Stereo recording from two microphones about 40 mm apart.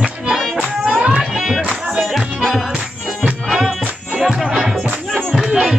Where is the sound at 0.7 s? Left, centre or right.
Centre.